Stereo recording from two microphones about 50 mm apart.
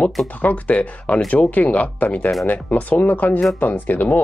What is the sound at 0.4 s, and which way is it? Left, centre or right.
Speech, left.